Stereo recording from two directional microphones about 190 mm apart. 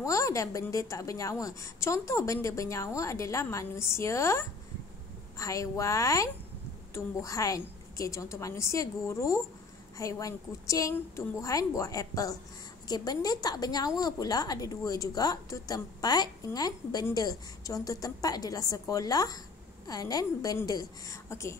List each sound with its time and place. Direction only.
0.0 s a woman's voice: 15° left (ahead or behind)